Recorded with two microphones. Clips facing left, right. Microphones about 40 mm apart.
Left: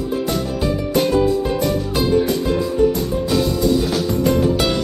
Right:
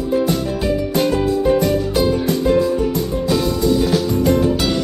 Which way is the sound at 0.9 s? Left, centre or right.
Centre.